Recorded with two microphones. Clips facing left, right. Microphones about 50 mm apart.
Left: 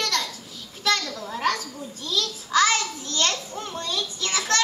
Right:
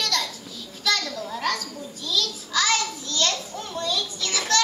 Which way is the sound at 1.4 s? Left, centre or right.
Left.